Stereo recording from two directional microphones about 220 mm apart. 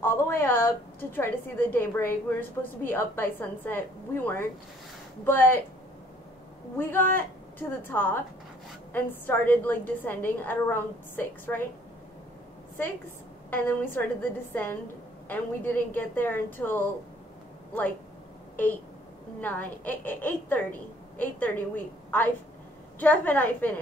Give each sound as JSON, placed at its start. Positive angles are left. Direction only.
{"t": 0.0, "sound": "a woman's voice", "side_deg": 10}
{"t": 6.8, "sound": "a woman's voice", "side_deg": 10}
{"t": 13.5, "sound": "a woman's voice", "side_deg": 10}
{"t": 19.4, "sound": "a woman's voice", "side_deg": 10}